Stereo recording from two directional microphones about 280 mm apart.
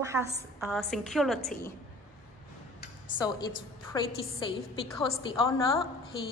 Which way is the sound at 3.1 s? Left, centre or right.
Centre.